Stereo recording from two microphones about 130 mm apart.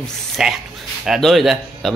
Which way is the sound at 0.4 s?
5° right (ahead or behind).